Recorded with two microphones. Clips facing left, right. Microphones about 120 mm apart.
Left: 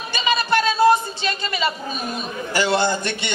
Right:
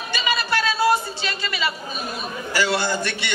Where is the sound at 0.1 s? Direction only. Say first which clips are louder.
Left 4 dB; 25° left (ahead or behind).